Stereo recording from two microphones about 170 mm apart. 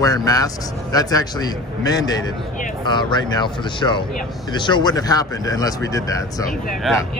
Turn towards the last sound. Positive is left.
turn(degrees=0)  # may be behind; listen again after turning